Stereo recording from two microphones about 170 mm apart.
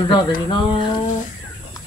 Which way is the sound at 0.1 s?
30° left (ahead or behind).